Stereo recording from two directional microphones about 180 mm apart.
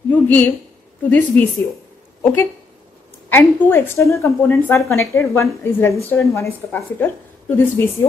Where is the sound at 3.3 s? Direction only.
10° left (ahead or behind).